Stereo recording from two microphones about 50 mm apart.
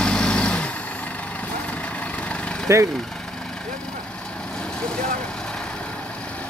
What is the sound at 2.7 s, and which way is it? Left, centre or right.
Speech, right.